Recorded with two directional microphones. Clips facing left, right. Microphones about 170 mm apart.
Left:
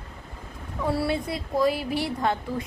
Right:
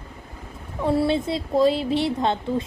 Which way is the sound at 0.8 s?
25° right (ahead or behind).